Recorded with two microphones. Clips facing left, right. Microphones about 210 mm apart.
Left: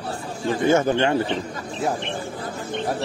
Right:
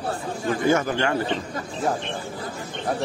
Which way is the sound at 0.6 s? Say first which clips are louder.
Left 4 dB; 25° left (ahead or behind).